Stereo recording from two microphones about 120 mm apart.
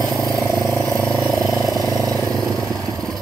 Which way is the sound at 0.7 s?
25° right (ahead or behind).